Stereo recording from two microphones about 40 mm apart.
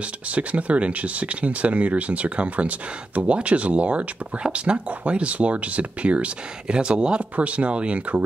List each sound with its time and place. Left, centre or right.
0.3 s speech: right